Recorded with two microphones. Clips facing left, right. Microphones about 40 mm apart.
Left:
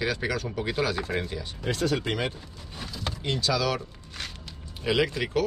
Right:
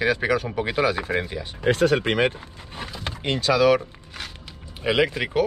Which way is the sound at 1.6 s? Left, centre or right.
Right.